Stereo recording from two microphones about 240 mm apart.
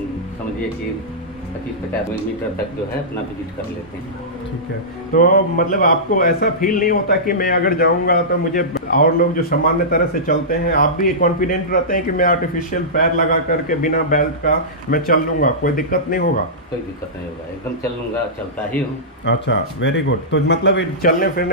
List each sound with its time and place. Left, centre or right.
5.1 s a man's voice: left
19.2 s a man's voice: left